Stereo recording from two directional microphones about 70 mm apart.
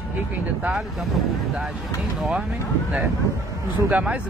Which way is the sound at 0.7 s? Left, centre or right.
Centre.